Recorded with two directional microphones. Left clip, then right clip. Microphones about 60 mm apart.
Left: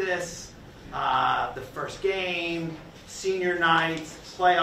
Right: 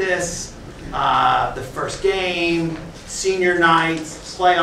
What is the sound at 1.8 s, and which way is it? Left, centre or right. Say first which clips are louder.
Speech: right 8 dB; centre.